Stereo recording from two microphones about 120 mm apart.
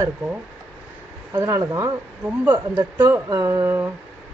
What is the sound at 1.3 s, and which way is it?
A woman's voice, 25° right (ahead or behind).